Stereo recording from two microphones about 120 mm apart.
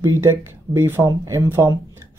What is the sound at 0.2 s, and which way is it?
Speech, 20° right (ahead or behind).